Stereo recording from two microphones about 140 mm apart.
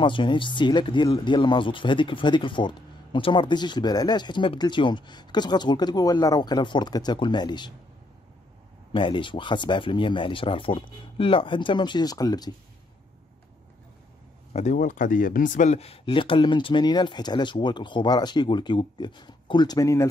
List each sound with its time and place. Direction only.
0.0 s speech: 35° left (ahead or behind)
8.9 s speech: 35° left (ahead or behind)
14.5 s speech: 55° left (ahead or behind); by 20.1 s 20° left (ahead or behind)